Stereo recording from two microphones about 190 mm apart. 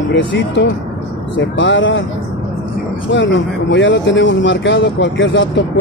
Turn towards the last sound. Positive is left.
turn(degrees=75)  # may be behind; listen again after turning